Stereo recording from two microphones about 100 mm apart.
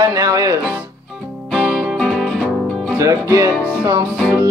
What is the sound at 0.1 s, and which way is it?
Music, 35° right (ahead or behind).